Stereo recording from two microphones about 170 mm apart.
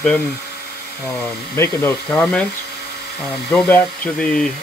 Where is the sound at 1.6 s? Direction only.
15° left (ahead or behind).